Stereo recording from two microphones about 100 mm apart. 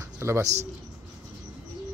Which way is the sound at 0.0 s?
30° right (ahead or behind).